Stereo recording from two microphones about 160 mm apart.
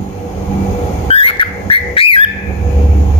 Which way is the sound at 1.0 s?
35° left (ahead or behind).